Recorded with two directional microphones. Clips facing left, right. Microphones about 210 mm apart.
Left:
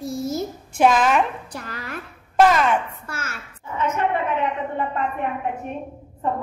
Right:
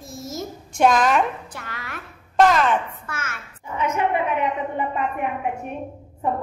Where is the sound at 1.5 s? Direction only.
35° left (ahead or behind).